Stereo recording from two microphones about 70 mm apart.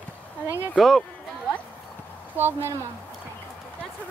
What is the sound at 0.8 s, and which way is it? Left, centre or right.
Speech, centre.